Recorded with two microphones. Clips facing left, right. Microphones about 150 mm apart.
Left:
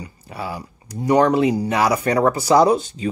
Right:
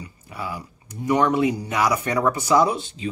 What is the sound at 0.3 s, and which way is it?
Speech, 35° left (ahead or behind).